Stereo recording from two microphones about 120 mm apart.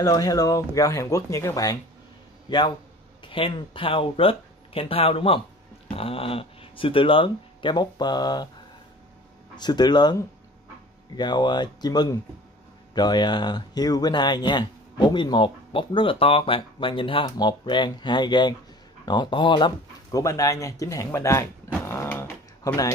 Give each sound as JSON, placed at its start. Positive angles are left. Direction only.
{"t": 0.0, "sound": "speech", "side_deg": 30}
{"t": 9.6, "sound": "speech", "side_deg": 35}
{"t": 11.1, "sound": "speech", "side_deg": 40}
{"t": 20.1, "sound": "speech", "side_deg": 30}